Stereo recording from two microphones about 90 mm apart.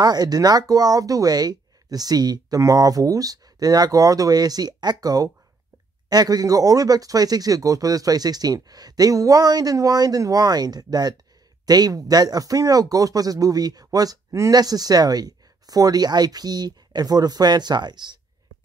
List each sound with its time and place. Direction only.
0.0 s speech: 45° right (ahead or behind)